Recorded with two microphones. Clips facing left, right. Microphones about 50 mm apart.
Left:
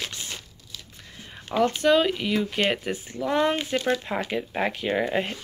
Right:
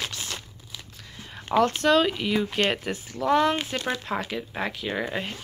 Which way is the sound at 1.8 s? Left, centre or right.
Centre.